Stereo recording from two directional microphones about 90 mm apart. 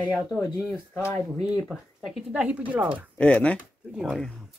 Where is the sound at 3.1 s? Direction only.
15° left (ahead or behind).